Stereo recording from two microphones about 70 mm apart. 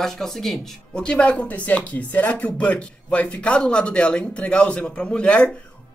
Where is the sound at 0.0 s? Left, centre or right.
Centre.